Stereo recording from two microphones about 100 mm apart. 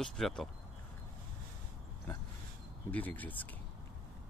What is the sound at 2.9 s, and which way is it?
Speech, 15° left (ahead or behind).